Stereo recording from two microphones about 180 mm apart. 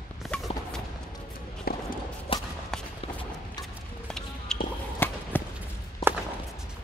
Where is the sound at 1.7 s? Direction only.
55° left (ahead or behind).